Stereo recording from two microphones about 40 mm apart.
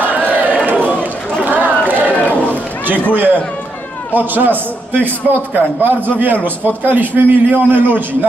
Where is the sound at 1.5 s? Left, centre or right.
Right.